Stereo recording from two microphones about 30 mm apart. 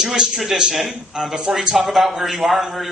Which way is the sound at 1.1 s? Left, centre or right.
Right.